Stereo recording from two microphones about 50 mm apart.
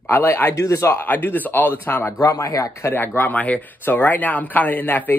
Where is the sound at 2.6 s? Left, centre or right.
Left.